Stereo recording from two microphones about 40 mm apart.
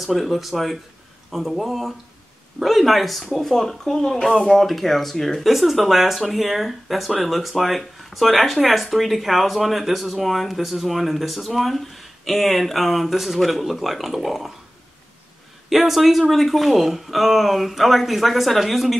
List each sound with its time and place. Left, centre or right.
0.0 s speech: centre
4.6 s speech: centre
15.7 s speech: centre